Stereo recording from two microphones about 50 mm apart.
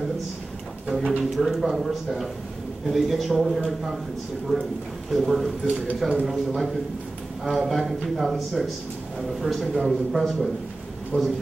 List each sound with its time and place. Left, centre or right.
0.9 s speech: centre
4.5 s a man's voice: centre
11.1 s a man's voice: right